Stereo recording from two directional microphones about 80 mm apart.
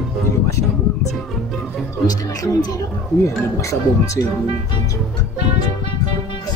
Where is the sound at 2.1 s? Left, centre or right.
Left.